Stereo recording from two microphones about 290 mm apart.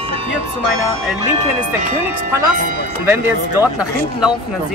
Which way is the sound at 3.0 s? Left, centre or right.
Centre.